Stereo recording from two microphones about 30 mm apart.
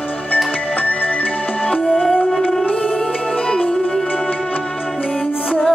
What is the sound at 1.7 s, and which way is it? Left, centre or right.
Music, left.